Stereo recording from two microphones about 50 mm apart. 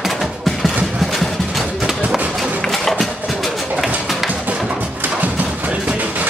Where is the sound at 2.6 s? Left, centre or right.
Centre.